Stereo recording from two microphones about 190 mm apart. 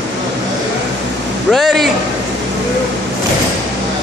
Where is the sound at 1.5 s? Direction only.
Centre (ahead or behind).